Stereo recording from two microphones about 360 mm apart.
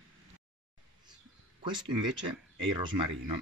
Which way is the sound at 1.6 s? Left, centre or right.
Centre.